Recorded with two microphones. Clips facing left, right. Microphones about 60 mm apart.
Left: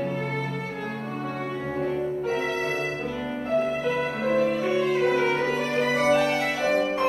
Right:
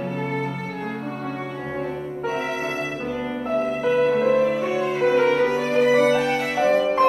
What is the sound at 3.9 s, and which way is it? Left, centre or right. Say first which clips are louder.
Music: right 7 dB; right.